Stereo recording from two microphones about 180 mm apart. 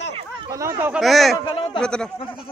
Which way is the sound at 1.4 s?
25° left (ahead or behind).